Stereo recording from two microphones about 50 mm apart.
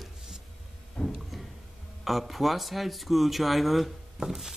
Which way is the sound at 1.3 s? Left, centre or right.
Centre.